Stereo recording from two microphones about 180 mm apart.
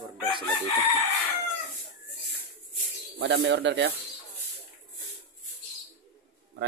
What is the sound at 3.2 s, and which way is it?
Speech, 80° right.